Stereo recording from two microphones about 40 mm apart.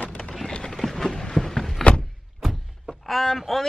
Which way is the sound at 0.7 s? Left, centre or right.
Centre.